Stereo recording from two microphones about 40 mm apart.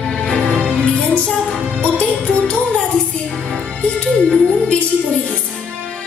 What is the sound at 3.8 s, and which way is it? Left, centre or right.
Music, left.